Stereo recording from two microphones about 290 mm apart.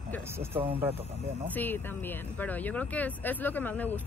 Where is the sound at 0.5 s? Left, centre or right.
Centre.